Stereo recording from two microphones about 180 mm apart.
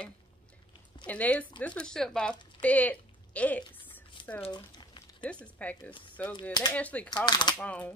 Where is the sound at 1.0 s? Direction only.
5° left (ahead or behind).